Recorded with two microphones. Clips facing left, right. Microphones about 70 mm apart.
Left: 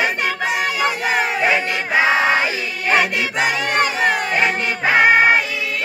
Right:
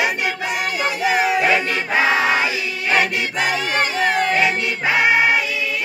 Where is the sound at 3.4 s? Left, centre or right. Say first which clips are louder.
Left 2 dB; left.